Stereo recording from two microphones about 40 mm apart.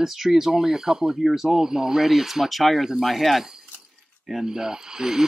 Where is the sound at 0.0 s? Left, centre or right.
Centre.